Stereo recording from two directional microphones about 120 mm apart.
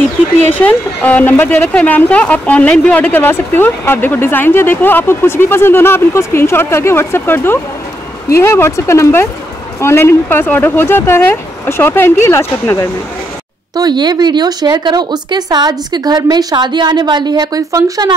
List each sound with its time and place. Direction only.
0.6 s speech: 10° left (ahead or behind)
13.7 s speech: 35° right (ahead or behind)